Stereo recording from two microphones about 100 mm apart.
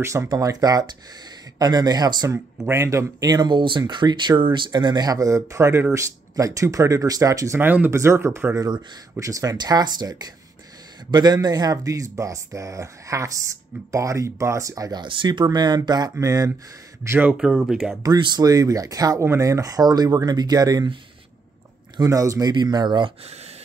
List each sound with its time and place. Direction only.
0.0 s speech: 30° right (ahead or behind)
0.3 s speech: 40° right (ahead or behind)
2.3 s speech: 25° right (ahead or behind)
7.6 s speech: 15° right (ahead or behind)
7.9 s speech: 30° right (ahead or behind)
8.5 s speech: 45° right (ahead or behind)
9.2 s speech: 35° right (ahead or behind)
15.0 s speech: 55° right (ahead or behind); by 17.3 s 25° right (ahead or behind)
17.3 s speech: 5° right (ahead or behind)
18.0 s speech: 45° right (ahead or behind)
21.9 s speech: 35° right (ahead or behind)
22.5 s speech: 45° right (ahead or behind)
23.2 s speech: 90° right